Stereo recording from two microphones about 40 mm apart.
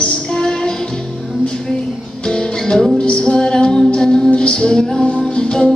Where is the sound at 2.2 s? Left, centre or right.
Centre.